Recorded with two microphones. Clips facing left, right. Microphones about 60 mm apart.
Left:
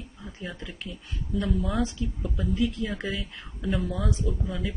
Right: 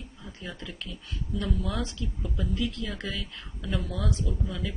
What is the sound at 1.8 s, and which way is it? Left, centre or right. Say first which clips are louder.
A woman's voice: left 5 dB; centre.